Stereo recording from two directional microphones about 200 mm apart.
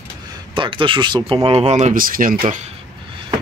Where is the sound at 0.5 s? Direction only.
25° right (ahead or behind); by 2.4 s 45° right (ahead or behind).